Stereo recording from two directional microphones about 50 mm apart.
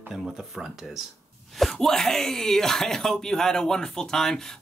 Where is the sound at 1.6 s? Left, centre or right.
Centre.